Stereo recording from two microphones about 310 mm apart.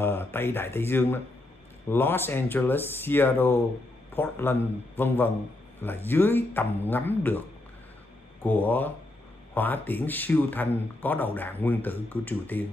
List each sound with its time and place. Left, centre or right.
0.0 s speech: centre
8.5 s a man's voice: centre